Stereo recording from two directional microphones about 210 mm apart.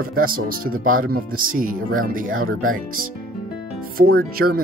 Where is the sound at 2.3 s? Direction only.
80° right.